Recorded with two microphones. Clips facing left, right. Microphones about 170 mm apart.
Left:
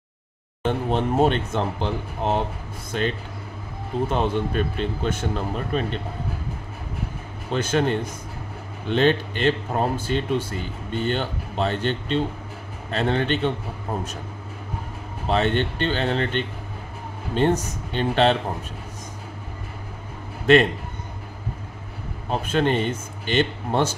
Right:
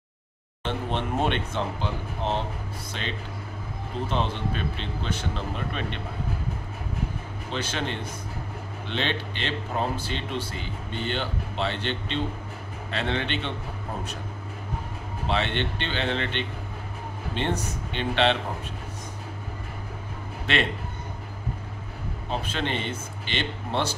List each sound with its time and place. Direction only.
0.7 s speech: 40° left (ahead or behind)
2.9 s speech: 50° left (ahead or behind)
7.5 s speech: 50° left (ahead or behind)
15.2 s speech: 40° left (ahead or behind)
20.5 s speech: 45° left (ahead or behind)
22.3 s speech: 45° left (ahead or behind)